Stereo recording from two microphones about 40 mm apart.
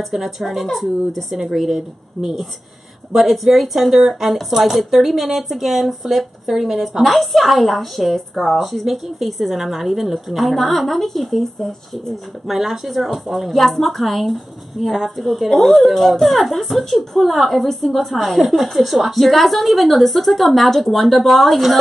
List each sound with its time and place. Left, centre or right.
0.0 s speech: centre